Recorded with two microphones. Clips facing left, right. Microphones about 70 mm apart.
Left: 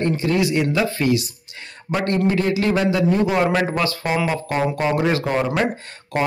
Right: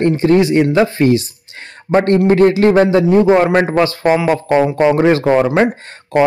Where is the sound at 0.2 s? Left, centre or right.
Right.